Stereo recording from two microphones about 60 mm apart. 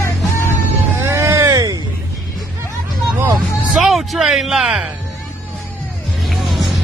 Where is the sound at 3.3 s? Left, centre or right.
Centre.